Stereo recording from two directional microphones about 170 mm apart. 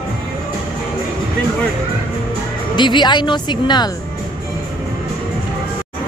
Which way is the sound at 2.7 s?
25° left (ahead or behind).